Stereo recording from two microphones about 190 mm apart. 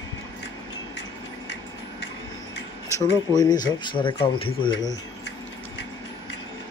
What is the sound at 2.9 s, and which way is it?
Speech, 20° left (ahead or behind).